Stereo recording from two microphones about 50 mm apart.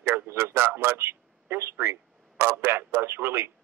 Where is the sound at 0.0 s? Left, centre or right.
Right.